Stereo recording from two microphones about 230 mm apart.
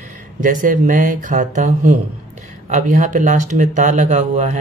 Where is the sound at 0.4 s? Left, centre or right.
Right.